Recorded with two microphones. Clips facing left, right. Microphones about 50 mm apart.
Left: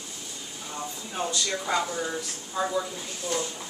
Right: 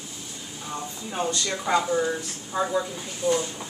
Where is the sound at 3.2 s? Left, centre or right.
Centre.